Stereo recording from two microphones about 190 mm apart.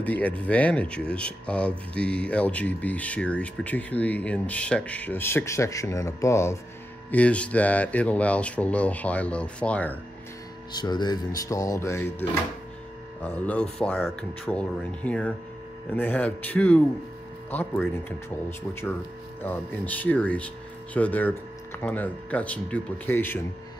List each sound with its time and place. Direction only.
0.0 s speech: 10° left (ahead or behind)
10.7 s speech: 20° left (ahead or behind)
19.4 s speech: 10° left (ahead or behind)